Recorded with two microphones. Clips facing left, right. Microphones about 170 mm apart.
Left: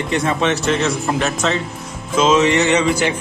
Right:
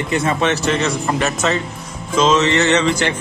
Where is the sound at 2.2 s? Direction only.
10° left (ahead or behind).